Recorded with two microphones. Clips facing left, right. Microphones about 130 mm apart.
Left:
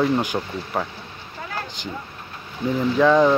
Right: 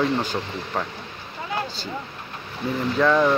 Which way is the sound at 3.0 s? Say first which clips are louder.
Left 3 dB; 10° left (ahead or behind).